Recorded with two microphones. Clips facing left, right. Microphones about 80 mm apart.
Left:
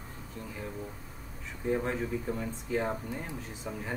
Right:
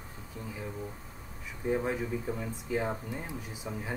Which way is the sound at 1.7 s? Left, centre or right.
Centre.